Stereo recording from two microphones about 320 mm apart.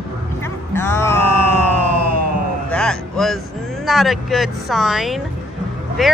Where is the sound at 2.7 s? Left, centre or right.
Centre.